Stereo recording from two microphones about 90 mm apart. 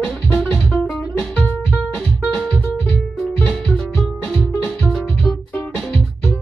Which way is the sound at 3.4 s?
10° left (ahead or behind).